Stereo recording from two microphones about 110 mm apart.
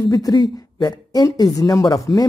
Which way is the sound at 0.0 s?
35° left (ahead or behind).